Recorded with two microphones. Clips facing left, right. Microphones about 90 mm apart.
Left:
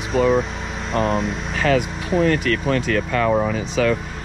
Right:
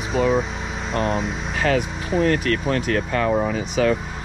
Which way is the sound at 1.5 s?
40° right (ahead or behind).